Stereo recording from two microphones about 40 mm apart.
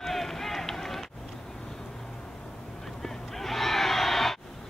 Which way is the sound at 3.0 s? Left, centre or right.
Centre.